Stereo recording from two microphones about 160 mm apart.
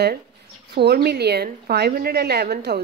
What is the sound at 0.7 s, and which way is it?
A woman's voice, 75° right (ahead or behind).